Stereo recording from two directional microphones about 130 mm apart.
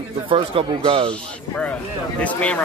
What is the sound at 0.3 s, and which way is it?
Speech, 40° right (ahead or behind).